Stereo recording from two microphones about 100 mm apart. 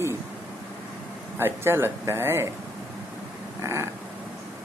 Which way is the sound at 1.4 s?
25° right (ahead or behind).